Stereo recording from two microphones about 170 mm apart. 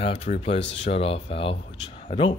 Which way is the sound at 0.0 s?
35° left (ahead or behind).